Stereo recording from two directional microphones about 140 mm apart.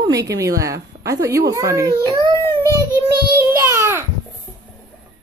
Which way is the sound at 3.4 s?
15° right (ahead or behind).